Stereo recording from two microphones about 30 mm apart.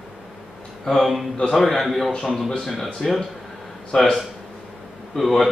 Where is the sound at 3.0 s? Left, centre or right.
Centre.